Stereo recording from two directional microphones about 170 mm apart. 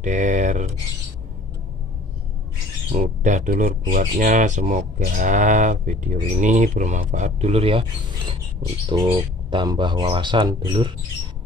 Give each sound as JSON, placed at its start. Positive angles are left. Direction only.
{"t": 0.0, "sound": "speech", "side_deg": -45}
{"t": 2.9, "sound": "speech", "side_deg": -45}
{"t": 8.9, "sound": "speech", "side_deg": -30}